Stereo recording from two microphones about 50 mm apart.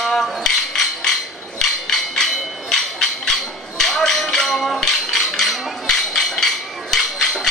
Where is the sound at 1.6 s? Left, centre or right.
Centre.